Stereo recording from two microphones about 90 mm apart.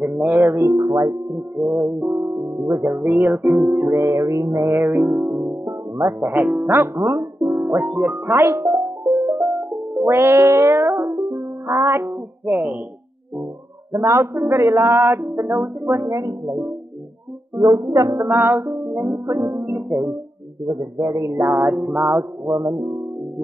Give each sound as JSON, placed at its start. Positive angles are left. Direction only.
{"t": 0.0, "sound": "speech", "side_deg": -20}
{"t": 3.2, "sound": "music", "side_deg": -10}
{"t": 3.9, "sound": "music", "side_deg": -30}
{"t": 6.1, "sound": "speech", "side_deg": -20}
{"t": 9.9, "sound": "music", "side_deg": -25}
{"t": 13.9, "sound": "speech", "side_deg": -35}
{"t": 17.7, "sound": "music", "side_deg": -40}
{"t": 18.2, "sound": "music", "side_deg": -30}
{"t": 20.6, "sound": "speech", "side_deg": -40}
{"t": 22.5, "sound": "music", "side_deg": -35}